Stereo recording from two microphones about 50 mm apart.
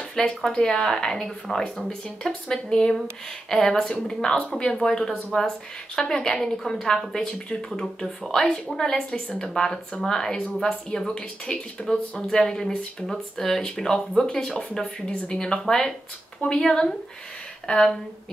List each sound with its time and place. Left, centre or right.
0.2 s speech: centre